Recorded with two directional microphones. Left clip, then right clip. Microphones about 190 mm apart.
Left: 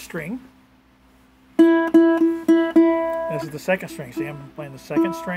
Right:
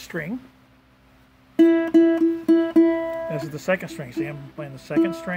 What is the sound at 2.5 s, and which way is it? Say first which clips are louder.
Music: left 2 dB; 25° left (ahead or behind).